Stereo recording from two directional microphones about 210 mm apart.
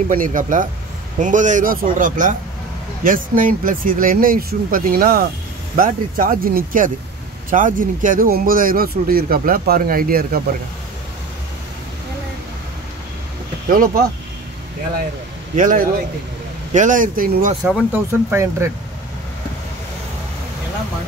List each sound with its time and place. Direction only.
0.1 s speech: 40° right (ahead or behind)
13.7 s speech: 45° right (ahead or behind)
15.5 s speech: 40° right (ahead or behind)
17.9 s speech: 10° right (ahead or behind)